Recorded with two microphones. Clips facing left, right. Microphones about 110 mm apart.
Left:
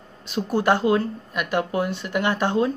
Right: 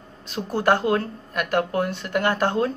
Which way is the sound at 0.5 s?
10° left (ahead or behind).